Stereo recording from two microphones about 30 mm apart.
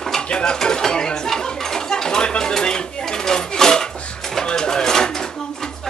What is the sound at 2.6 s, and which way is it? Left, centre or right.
Dishes, left.